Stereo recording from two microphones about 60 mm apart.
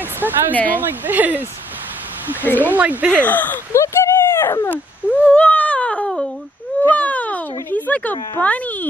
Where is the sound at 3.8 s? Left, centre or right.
Left.